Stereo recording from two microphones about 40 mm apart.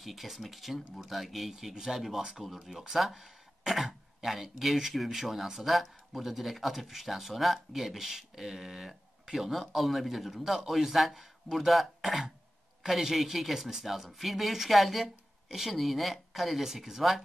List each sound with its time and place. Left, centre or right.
0.0 s speech: centre